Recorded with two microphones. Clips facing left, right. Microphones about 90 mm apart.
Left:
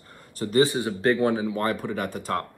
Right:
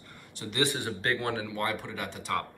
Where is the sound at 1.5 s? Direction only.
40° left (ahead or behind).